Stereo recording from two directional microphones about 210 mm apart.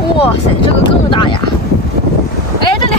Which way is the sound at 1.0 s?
25° left (ahead or behind).